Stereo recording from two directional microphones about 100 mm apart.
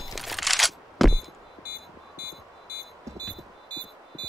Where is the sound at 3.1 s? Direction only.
30° right (ahead or behind).